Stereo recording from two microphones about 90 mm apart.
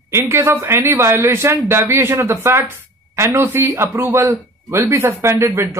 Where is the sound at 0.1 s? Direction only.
30° right (ahead or behind).